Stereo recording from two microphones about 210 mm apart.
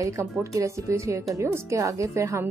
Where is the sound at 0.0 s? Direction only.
15° right (ahead or behind).